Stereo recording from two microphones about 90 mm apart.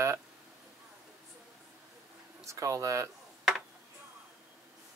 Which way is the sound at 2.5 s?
35° right (ahead or behind).